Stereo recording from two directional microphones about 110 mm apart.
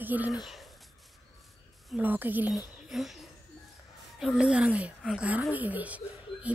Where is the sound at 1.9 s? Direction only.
15° right (ahead or behind).